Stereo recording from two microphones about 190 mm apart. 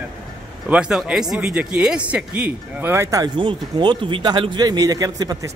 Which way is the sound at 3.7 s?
25° right (ahead or behind).